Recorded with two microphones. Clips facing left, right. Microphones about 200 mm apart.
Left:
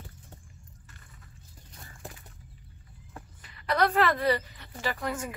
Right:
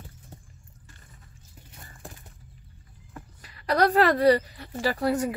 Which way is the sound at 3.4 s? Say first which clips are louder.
Right 4 dB; 40° right (ahead or behind).